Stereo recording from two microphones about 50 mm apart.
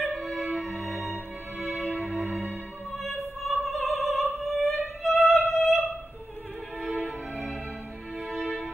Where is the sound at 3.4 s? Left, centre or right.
Centre.